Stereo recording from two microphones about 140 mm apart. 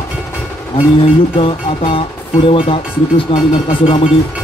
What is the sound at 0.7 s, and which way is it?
Music, 40° left (ahead or behind).